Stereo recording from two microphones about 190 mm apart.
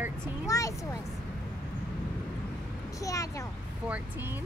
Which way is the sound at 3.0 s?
15° left (ahead or behind).